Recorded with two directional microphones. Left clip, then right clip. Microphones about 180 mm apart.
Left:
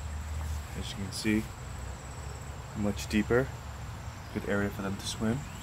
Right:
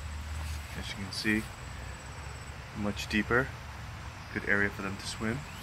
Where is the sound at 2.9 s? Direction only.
15° left (ahead or behind).